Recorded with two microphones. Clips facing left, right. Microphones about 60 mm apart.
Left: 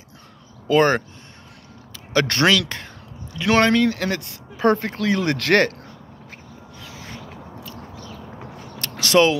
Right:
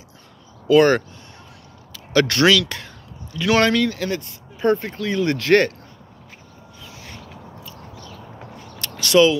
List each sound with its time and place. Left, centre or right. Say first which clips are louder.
0.7 s speech: right 3 dB; left
2.1 s speech: right 2 dB; left
3.9 s speech: even; left
8.9 s speech: right 1 dB; left